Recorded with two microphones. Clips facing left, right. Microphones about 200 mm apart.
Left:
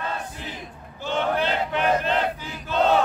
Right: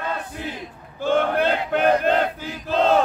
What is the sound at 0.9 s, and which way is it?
Battle cry, 55° right (ahead or behind).